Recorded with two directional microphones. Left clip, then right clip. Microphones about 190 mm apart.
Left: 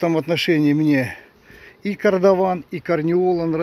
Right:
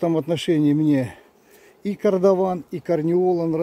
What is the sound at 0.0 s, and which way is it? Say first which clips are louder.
Speech: left 3 dB; 15° right (ahead or behind).